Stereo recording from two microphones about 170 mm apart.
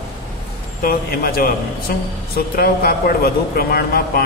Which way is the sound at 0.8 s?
60° left (ahead or behind).